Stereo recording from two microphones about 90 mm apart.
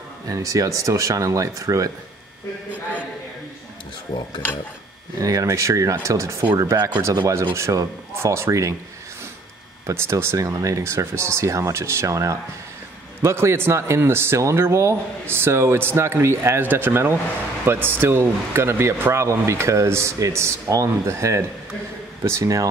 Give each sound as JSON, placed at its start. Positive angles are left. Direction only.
{"t": 0.3, "sound": "speech", "side_deg": -40}
{"t": 5.2, "sound": "speech", "side_deg": -40}
{"t": 6.9, "sound": "speech", "side_deg": -30}
{"t": 9.8, "sound": "speech", "side_deg": -35}